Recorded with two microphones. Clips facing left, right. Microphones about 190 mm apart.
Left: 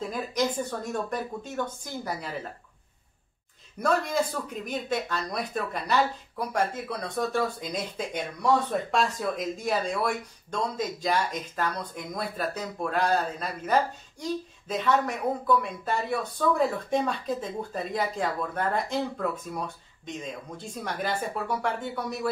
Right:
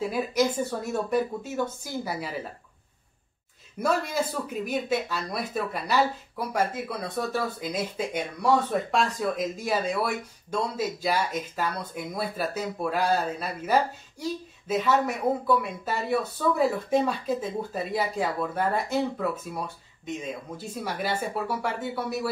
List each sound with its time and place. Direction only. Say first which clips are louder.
0.0 s speech: right 3 dB; 10° right (ahead or behind)
3.8 s speech: even; 5° right (ahead or behind)